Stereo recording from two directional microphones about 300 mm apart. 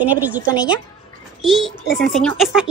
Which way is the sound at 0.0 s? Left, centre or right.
Centre.